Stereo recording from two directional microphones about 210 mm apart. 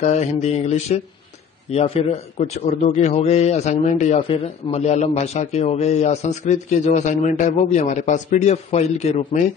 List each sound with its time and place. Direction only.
0.0 s a man's voice: 35° left (ahead or behind)
2.3 s a man's voice: 30° left (ahead or behind)